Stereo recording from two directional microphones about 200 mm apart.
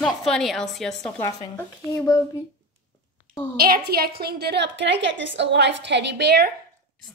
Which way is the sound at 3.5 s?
50° right (ahead or behind).